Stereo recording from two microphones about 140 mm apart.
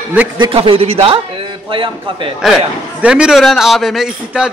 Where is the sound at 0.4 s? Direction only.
40° right (ahead or behind).